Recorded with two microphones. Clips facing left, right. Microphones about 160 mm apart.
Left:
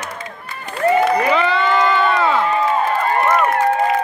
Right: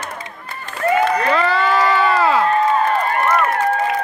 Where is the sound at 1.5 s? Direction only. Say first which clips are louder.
Even; 5° right (ahead or behind).